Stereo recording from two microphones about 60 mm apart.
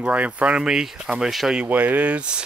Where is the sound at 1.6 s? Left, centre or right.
Right.